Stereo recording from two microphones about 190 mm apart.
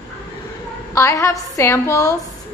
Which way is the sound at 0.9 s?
15° left (ahead or behind).